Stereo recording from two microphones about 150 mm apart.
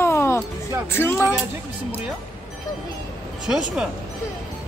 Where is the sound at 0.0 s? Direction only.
15° left (ahead or behind).